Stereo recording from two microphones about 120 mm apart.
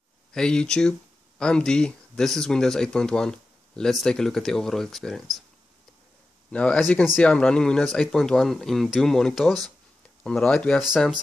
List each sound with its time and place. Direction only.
0.3 s speech: 5° left (ahead or behind)
6.5 s speech: 10° left (ahead or behind)
10.8 s speech: 5° right (ahead or behind)